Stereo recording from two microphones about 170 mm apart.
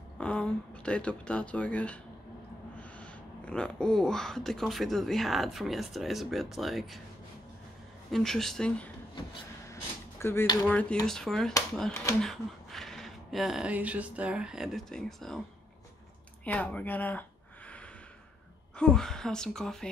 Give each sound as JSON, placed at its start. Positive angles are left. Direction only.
{"t": 0.2, "sound": "speech", "side_deg": 5}
{"t": 8.1, "sound": "speech", "side_deg": 0}
{"t": 9.7, "sound": "a sound", "side_deg": 15}
{"t": 10.7, "sound": "speech", "side_deg": 5}
{"t": 16.4, "sound": "a sound", "side_deg": 10}
{"t": 18.8, "sound": "speech", "side_deg": 5}